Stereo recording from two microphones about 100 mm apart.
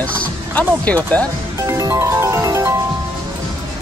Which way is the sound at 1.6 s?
30° right (ahead or behind).